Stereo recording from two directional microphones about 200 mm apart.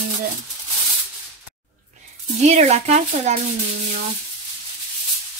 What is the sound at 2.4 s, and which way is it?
Speech, 35° right (ahead or behind).